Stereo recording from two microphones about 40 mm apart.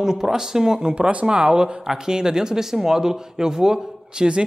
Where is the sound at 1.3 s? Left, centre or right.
Right.